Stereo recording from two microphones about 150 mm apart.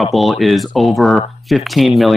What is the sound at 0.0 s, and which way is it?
Speech, centre (ahead or behind).